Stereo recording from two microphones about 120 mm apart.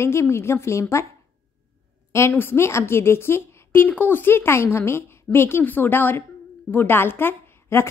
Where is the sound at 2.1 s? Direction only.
20° left (ahead or behind).